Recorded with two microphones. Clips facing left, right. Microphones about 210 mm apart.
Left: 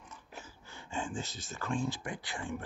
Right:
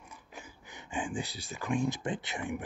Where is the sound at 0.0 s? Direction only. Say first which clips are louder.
Even; 15° right (ahead or behind).